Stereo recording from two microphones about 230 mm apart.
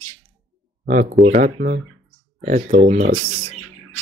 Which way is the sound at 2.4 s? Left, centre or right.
Right.